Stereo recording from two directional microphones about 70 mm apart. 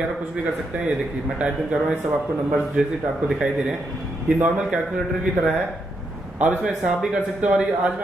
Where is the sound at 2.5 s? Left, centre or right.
Centre.